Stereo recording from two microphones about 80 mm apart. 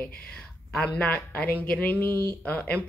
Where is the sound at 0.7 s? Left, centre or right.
Centre.